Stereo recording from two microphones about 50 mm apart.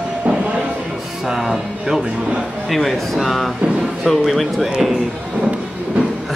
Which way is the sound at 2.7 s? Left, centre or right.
Centre.